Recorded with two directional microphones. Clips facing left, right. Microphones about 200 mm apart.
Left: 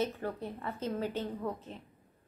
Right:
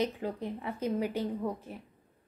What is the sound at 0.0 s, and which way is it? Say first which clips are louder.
A woman's voice: right 2 dB; 15° right (ahead or behind).